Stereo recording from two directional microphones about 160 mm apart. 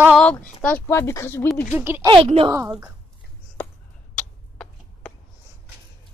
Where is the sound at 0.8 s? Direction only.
15° left (ahead or behind).